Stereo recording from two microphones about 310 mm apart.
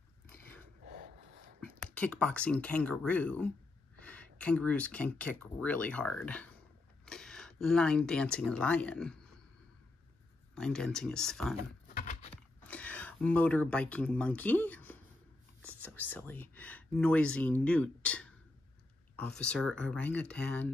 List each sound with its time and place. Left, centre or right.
0.8 s snort: right
2.0 s speech: centre
7.1 s a sound: centre
7.6 s speech: centre
10.5 s speech: centre
11.9 s keys jangling: left
12.6 s speech: centre